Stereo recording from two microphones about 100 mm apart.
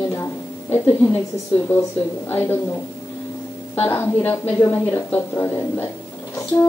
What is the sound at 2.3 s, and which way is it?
Speech, 20° left (ahead or behind).